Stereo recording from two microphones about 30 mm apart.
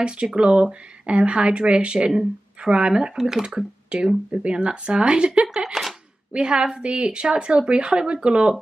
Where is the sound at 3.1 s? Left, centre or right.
Centre.